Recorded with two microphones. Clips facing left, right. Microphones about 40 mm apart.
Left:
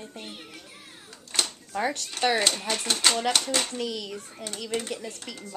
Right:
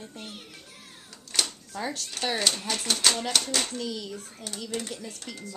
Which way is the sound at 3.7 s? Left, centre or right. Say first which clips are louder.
Left 2 dB; left.